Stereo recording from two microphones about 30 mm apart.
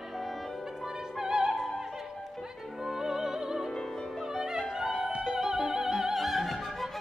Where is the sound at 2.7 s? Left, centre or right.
Centre.